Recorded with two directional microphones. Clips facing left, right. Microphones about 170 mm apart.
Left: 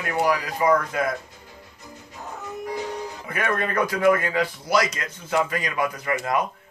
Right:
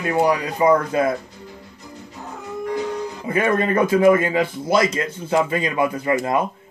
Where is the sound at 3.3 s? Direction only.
25° right (ahead or behind).